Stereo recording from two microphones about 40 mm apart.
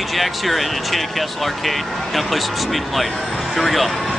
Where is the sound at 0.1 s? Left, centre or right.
Centre.